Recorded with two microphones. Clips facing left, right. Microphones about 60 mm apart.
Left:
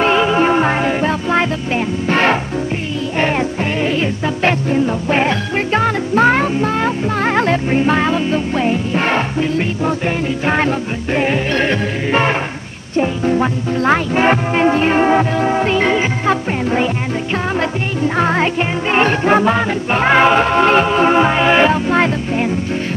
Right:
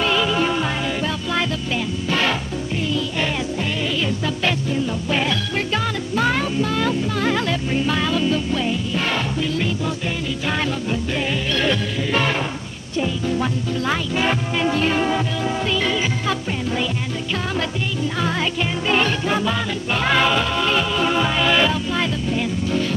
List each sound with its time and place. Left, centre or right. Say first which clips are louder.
0.0 s music: left 6 dB; left
4.0 s music: left 5 dB; left